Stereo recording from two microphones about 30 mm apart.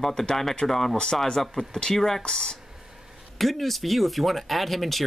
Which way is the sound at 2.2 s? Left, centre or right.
Left.